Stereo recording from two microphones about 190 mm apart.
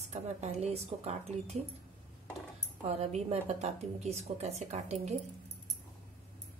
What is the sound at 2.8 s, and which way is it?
A woman's voice, 35° right (ahead or behind).